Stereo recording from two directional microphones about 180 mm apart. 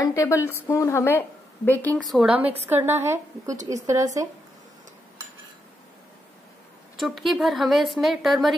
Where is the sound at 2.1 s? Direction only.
5° right (ahead or behind).